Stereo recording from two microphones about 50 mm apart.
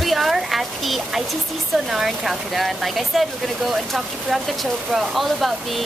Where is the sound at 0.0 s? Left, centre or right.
Centre.